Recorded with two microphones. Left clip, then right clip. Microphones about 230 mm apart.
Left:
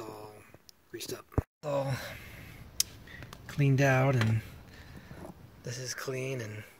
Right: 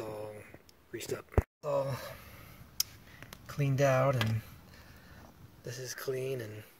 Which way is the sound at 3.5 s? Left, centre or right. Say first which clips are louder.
Left 1 dB; right.